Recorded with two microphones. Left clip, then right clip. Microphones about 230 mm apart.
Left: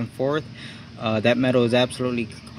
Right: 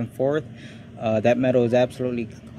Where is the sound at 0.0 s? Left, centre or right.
Centre.